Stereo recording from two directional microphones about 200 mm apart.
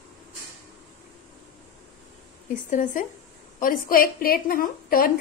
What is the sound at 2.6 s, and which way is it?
A woman's voice, 40° left (ahead or behind).